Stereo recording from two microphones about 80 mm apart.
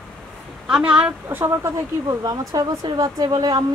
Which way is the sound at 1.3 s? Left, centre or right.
Right.